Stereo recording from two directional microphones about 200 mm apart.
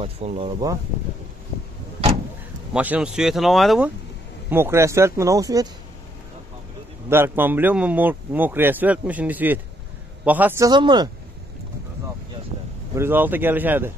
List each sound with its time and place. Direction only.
0.0 s speech: 30° right (ahead or behind)
2.7 s speech: 5° right (ahead or behind)
4.5 s speech: 10° right (ahead or behind)
7.1 s speech: 10° right (ahead or behind)
10.7 s speech: 20° right (ahead or behind)
12.9 s speech: 10° right (ahead or behind)